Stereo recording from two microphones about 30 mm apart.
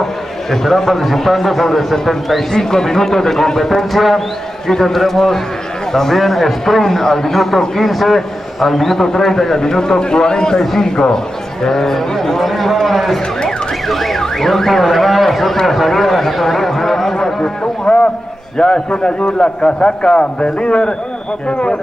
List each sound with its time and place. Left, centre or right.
0.0 s a man's voice: centre
2.5 s a man's voice: centre
4.6 s a man's voice: centre
8.9 s a man's voice: centre
9.6 s a man's voice: left; by 13.2 s centre
13.8 s car alarm: centre
14.2 s a man's voice: centre
17.4 s a sound: left
18.6 s a man's voice: left